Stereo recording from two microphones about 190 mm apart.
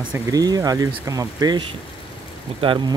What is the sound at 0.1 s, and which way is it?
Speech, 20° right (ahead or behind).